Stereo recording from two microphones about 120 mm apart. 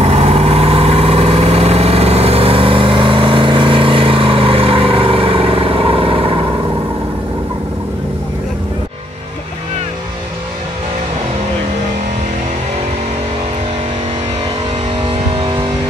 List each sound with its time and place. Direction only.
0.0 s vehicle: 60° right (ahead or behind)
15.0 s vehicle: 40° right (ahead or behind)